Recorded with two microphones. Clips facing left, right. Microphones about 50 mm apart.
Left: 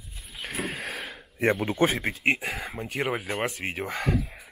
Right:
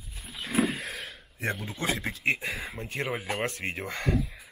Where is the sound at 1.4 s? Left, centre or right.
Left.